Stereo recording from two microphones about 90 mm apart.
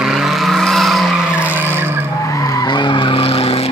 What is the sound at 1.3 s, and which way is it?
Skidding, 20° right (ahead or behind).